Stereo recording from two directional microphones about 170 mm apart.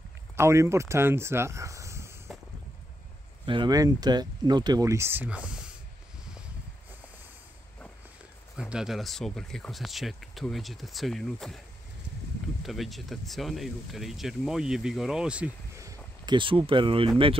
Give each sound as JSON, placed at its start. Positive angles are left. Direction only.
{"t": 0.4, "sound": "speech", "side_deg": -15}
{"t": 3.4, "sound": "speech", "side_deg": -25}
{"t": 8.5, "sound": "speech", "side_deg": -5}
{"t": 12.6, "sound": "speech", "side_deg": 0}
{"t": 16.3, "sound": "speech", "side_deg": -30}